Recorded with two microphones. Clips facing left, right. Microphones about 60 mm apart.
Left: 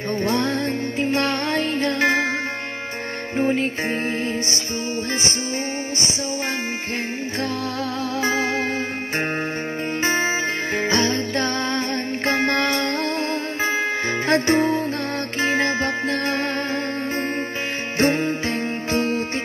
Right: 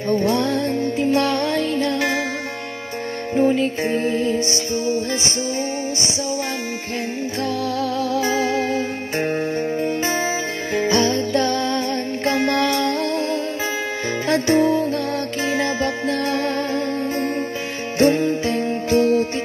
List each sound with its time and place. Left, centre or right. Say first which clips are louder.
0.1 s music: right 3 dB; left
3.3 s music: right 3 dB; left
8.2 s music: even; left
10.8 s music: right 4 dB; left